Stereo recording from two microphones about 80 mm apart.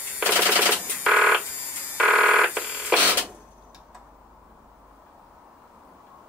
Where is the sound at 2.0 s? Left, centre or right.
Centre.